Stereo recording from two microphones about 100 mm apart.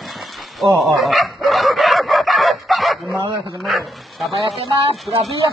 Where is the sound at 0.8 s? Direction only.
Centre (ahead or behind).